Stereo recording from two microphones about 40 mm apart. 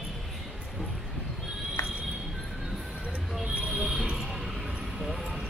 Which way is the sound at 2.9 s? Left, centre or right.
Right.